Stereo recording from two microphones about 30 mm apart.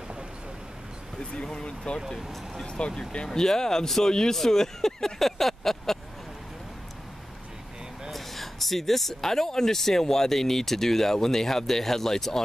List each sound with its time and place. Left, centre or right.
1.3 s speech: left
3.0 s speech: left
3.3 s speech: centre
5.2 s a sound: centre
8.1 s a sound: centre
9.3 s speech: centre